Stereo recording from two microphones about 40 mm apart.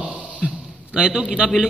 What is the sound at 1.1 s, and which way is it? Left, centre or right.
Speech, centre.